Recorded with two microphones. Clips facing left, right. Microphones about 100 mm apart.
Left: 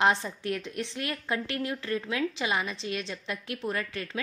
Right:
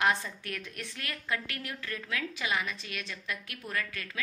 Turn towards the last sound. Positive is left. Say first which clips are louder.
# left 3 dB
turn(degrees=30)  # may be behind; listen again after turning